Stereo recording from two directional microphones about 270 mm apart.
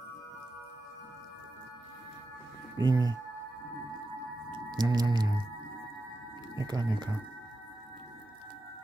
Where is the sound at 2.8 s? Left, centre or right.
Centre.